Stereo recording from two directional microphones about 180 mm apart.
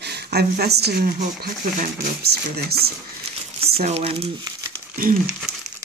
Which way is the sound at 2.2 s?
60° right (ahead or behind).